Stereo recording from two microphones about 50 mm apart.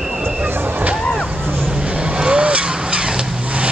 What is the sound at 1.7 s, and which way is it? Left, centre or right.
Vehicle, centre.